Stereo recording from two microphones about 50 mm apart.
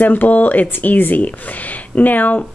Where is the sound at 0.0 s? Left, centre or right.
Left.